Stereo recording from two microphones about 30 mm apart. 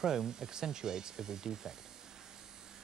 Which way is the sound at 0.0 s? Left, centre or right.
Centre.